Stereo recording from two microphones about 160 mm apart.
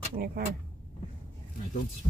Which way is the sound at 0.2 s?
60° right (ahead or behind).